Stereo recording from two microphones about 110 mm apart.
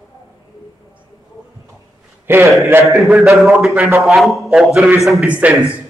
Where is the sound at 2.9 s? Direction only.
Centre (ahead or behind).